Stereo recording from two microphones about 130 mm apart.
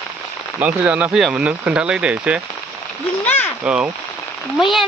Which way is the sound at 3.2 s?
15° left (ahead or behind).